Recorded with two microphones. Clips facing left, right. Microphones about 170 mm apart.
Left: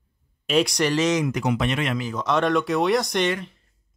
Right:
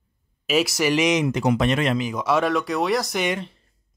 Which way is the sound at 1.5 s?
40° right (ahead or behind).